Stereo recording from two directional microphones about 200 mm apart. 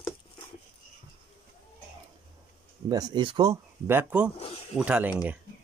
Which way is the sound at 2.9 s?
20° right (ahead or behind).